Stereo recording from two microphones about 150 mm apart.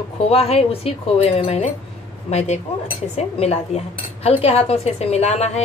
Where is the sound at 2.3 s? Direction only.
50° left (ahead or behind).